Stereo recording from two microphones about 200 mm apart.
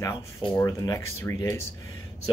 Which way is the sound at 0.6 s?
15° left (ahead or behind).